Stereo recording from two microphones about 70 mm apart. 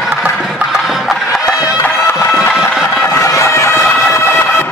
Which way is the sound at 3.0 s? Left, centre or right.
Left.